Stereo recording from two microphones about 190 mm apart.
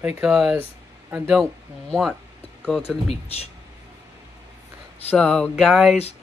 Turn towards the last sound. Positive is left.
turn(degrees=0)  # may be behind; listen again after turning